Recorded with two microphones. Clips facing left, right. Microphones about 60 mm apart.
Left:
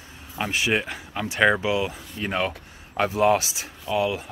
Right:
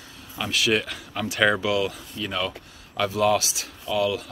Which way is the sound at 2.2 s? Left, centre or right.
Left.